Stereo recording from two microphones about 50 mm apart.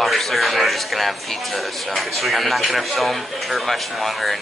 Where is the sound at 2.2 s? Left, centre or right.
Centre.